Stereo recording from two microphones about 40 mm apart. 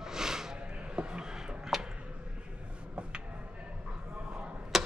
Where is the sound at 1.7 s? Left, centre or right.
Centre.